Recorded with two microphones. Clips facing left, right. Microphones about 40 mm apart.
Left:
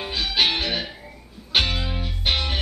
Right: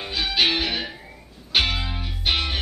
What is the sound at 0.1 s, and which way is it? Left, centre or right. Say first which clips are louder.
Music: right 1 dB; centre.